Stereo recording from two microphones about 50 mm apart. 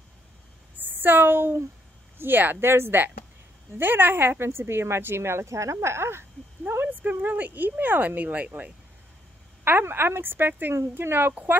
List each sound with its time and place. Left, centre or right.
0.7 s a woman's voice: right
6.9 s speech: right
9.7 s a woman's voice: right